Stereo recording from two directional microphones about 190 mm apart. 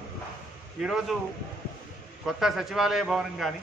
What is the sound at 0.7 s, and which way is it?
Speech, centre (ahead or behind).